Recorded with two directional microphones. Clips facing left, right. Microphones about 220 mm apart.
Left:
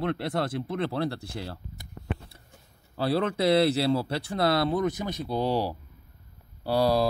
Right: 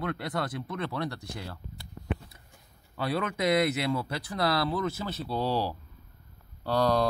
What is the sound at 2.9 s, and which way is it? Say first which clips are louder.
Speech: left 4 dB; 30° left (ahead or behind).